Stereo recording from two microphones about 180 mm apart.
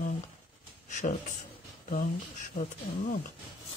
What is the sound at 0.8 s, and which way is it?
Speech, 40° left (ahead or behind).